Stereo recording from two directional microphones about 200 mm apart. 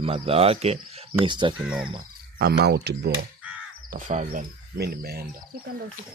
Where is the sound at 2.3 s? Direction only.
55° right (ahead or behind).